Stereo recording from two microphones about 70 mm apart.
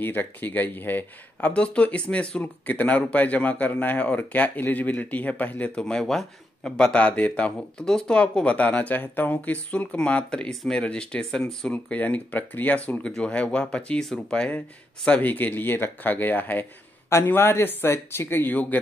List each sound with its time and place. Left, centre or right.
0.0 s speech: left
1.5 s speech: centre
11.7 s speech: left
15.0 s speech: left